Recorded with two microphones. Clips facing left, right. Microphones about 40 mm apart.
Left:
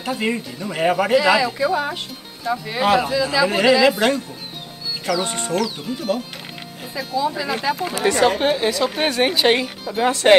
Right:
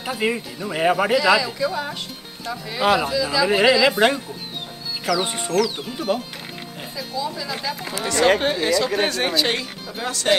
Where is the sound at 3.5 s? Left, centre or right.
Centre.